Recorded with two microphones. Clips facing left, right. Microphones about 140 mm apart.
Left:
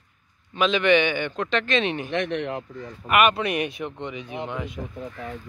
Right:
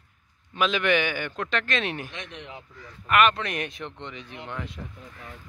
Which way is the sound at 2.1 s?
70° left (ahead or behind).